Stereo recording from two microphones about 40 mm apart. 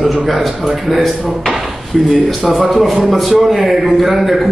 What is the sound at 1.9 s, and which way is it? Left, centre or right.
Speech, centre.